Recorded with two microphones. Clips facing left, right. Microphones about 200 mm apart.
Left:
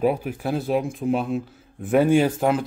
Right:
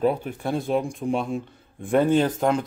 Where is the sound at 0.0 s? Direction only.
10° left (ahead or behind).